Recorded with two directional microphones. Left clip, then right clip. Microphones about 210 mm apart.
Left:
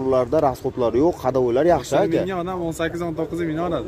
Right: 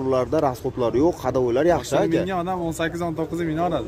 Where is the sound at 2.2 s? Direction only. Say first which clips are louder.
Even; 50° right (ahead or behind).